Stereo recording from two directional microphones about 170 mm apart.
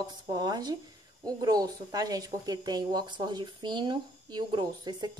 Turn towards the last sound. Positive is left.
turn(degrees=-25)  # may be behind; listen again after turning